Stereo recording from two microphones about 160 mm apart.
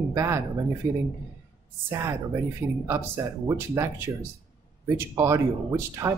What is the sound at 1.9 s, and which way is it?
Speech, 15° right (ahead or behind).